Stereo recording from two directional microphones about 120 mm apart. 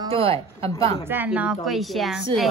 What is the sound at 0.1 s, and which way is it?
Speech, 55° right (ahead or behind).